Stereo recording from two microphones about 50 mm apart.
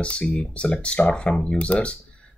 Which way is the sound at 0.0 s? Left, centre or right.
Left.